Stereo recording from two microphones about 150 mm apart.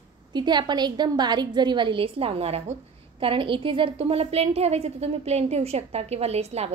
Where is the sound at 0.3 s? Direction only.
30° right (ahead or behind).